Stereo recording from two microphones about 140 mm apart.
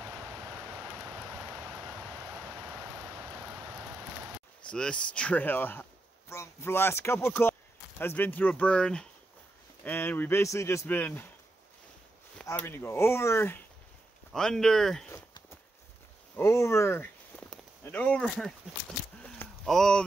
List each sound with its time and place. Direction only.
0.0 s a sound: 10° right (ahead or behind)
0.3 s vehicle: 20° right (ahead or behind)
4.6 s speech: 5° left (ahead or behind)
12.5 s speech: 15° left (ahead or behind)
14.3 s speech: 5° left (ahead or behind)
16.3 s speech: 20° left (ahead or behind)
19.2 s a sound: 10° left (ahead or behind)
19.7 s speech: 5° left (ahead or behind)